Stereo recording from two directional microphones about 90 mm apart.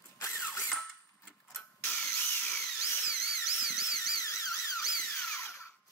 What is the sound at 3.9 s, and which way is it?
Alarm, 40° left (ahead or behind).